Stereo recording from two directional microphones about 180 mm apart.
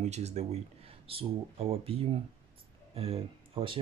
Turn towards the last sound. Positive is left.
turn(degrees=-30)  # may be behind; listen again after turning